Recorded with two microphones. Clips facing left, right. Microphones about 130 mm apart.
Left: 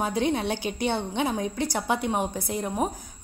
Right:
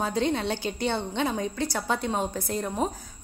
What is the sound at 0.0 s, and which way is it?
A woman's voice, 15° left (ahead or behind).